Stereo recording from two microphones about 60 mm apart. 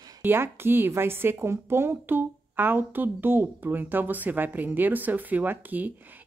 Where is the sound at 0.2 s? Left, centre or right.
Right.